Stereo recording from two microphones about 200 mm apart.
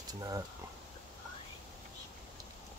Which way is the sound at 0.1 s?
20° right (ahead or behind).